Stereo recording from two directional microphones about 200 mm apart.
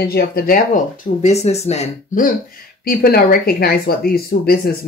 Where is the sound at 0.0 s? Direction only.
50° left (ahead or behind).